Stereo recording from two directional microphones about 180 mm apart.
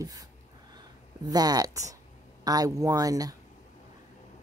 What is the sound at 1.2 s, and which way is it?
A woman's voice, 20° right (ahead or behind).